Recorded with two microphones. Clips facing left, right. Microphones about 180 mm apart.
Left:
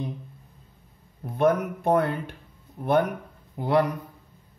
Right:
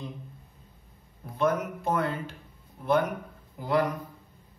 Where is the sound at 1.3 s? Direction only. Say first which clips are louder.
Left 5 dB; 60° left (ahead or behind).